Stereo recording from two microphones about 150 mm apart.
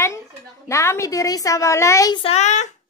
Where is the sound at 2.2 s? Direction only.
45° left (ahead or behind).